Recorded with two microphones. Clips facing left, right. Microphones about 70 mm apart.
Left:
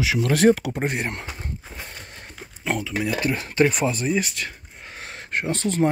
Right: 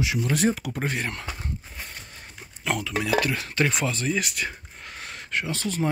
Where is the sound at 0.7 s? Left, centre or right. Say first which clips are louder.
Left 3 dB; left.